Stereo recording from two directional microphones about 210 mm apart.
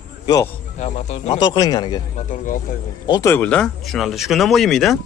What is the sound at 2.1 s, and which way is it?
Speech, 40° left (ahead or behind).